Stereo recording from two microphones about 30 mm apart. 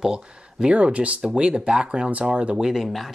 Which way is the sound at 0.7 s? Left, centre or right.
Right.